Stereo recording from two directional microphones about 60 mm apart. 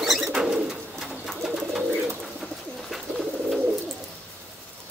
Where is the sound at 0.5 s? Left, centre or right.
Centre.